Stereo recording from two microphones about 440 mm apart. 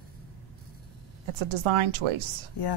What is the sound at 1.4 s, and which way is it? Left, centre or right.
Speech, right.